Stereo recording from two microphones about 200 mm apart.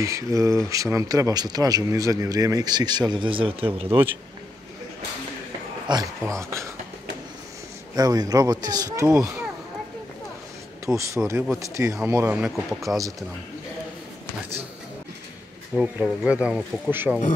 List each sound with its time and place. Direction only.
0.0 s speech: 15° right (ahead or behind)
5.9 s speech: 20° right (ahead or behind)
7.9 s speech: 20° right (ahead or behind)
10.9 s speech: 15° right (ahead or behind); by 13.0 s centre (ahead or behind)
15.7 s speech: 5° right (ahead or behind)